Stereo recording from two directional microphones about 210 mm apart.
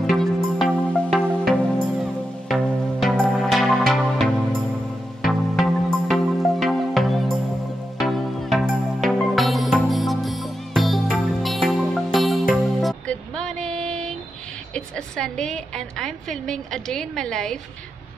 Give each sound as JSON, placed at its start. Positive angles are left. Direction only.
{"t": 0.1, "sound": "music", "side_deg": 0}
{"t": 14.7, "sound": "a woman's voice", "side_deg": 5}